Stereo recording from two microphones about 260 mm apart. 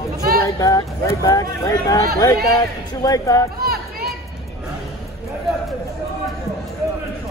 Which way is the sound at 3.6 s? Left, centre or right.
Right.